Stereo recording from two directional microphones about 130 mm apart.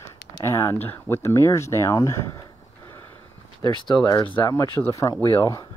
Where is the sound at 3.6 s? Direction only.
35° left (ahead or behind).